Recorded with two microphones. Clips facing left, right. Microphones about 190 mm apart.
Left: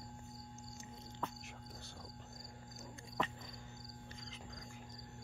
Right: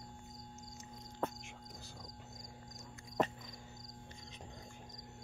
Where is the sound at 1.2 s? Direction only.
50° right (ahead or behind).